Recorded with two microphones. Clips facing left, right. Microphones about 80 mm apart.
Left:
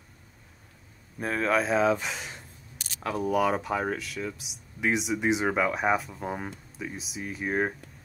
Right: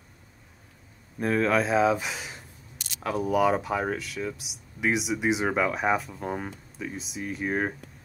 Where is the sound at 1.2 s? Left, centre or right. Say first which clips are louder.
Right 2 dB; centre.